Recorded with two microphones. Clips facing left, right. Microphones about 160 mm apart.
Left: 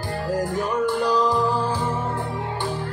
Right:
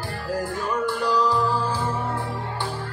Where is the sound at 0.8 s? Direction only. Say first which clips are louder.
Left 2 dB; 20° left (ahead or behind).